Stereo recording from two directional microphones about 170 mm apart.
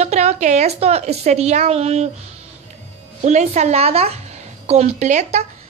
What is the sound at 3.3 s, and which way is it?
Speech, 40° right (ahead or behind).